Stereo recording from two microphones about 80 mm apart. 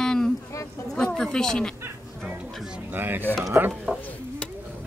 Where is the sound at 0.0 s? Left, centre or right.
Centre.